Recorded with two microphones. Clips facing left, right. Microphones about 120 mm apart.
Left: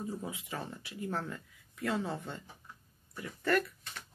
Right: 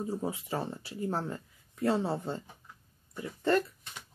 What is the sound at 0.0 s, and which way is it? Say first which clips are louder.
Speech: right 5 dB; 30° right (ahead or behind).